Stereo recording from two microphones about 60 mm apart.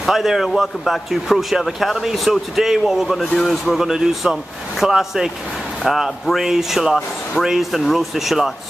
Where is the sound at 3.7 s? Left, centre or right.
Centre.